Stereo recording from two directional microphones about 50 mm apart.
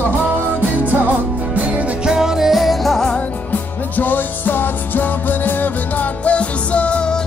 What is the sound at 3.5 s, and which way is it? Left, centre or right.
Music, left.